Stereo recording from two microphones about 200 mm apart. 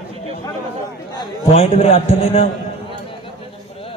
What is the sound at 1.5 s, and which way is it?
A man's voice, 35° left (ahead or behind).